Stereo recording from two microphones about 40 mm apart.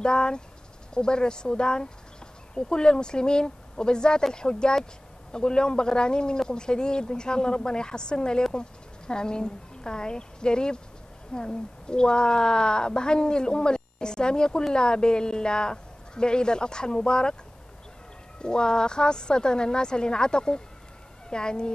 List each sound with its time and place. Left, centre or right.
0.0 s a woman's voice: left
18.4 s a woman's voice: left